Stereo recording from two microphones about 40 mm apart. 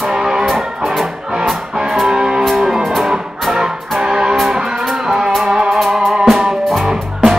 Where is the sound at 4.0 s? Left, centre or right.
Centre.